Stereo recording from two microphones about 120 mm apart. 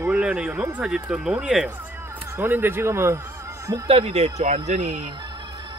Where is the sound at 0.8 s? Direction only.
5° right (ahead or behind).